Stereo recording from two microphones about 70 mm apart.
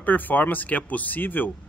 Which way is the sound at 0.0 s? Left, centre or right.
Left.